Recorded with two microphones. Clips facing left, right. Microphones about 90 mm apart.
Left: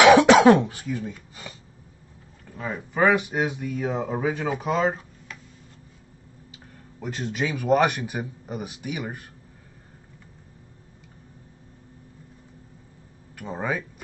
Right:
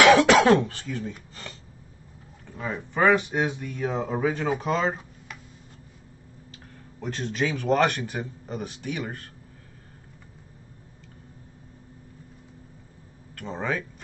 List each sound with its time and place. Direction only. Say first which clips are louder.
0.0 s speech: left 3 dB; 20° left (ahead or behind)
7.0 s speech: even; 5° left (ahead or behind)
13.4 s speech: left 1 dB; 10° left (ahead or behind)